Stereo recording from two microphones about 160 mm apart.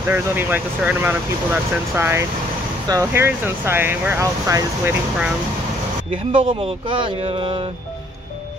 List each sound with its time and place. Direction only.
0.1 s speech: 10° right (ahead or behind)
6.3 s speech: 30° right (ahead or behind)